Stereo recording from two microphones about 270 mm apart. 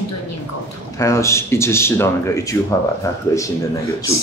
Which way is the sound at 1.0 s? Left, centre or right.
Centre.